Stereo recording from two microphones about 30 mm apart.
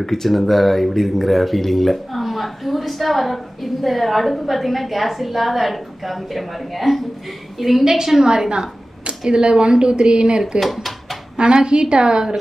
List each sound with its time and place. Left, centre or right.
0.0 s a woman's voice: centre
8.0 s a woman's voice: centre
8.5 s a sound: right
9.3 s a woman's voice: right
10.6 s speech: centre
11.3 s a woman's voice: right